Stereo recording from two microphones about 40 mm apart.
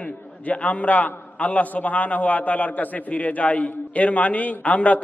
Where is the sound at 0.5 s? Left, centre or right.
Left.